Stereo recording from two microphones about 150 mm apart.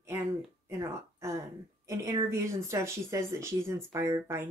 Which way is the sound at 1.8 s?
20° right (ahead or behind).